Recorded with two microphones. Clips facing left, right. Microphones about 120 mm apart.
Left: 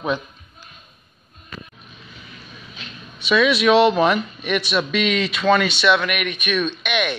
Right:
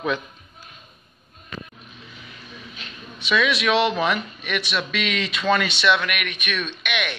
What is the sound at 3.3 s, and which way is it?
A man's voice, 10° left (ahead or behind).